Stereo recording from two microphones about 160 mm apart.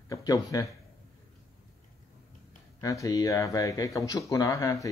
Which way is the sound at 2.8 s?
20° left (ahead or behind).